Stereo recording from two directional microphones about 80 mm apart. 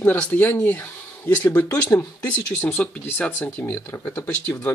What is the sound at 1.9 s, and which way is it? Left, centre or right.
Speech, left.